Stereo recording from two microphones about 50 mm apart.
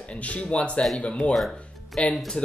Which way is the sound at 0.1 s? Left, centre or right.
Left.